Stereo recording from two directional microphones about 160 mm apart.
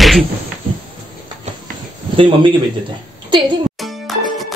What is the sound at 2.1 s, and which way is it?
Speech, 30° right (ahead or behind).